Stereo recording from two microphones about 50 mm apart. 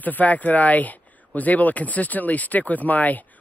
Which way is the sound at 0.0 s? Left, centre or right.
Left.